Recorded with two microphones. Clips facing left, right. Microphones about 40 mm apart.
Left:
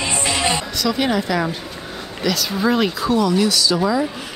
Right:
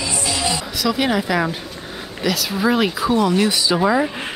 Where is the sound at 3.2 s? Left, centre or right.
Right.